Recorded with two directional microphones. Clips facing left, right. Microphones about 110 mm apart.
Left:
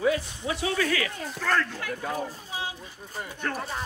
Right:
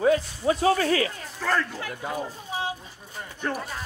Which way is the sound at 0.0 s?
40° right (ahead or behind).